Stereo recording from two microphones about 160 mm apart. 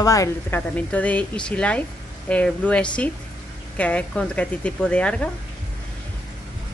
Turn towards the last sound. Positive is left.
turn(degrees=5)  # may be behind; listen again after turning